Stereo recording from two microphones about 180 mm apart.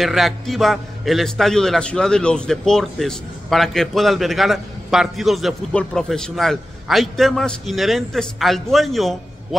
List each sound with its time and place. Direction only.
0.0 s a man's voice: centre (ahead or behind)